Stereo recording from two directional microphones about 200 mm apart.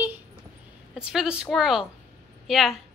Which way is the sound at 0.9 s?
5° right (ahead or behind).